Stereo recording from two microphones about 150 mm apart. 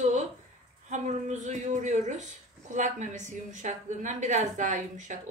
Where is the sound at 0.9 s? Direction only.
55° right (ahead or behind).